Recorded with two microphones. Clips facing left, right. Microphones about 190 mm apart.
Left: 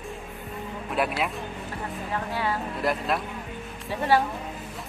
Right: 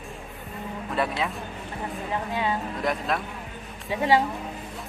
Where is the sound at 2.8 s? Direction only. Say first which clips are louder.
Left 3 dB; 5° left (ahead or behind).